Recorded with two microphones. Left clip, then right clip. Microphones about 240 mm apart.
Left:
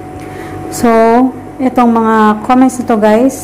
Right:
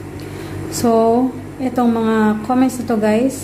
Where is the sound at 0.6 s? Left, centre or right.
Centre.